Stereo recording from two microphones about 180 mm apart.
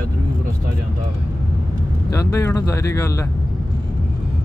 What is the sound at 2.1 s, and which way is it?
Speech, 15° left (ahead or behind).